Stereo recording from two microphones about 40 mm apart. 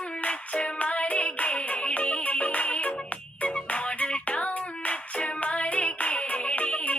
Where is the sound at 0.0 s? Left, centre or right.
Left.